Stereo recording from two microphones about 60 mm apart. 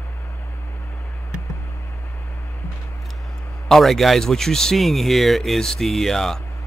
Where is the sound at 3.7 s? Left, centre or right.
Centre.